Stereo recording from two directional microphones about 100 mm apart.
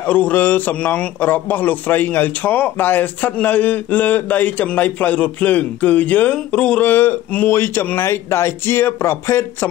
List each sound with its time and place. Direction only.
0.0 s a man's voice: 15° left (ahead or behind)